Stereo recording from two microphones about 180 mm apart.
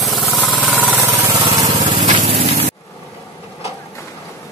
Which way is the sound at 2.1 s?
35° right (ahead or behind).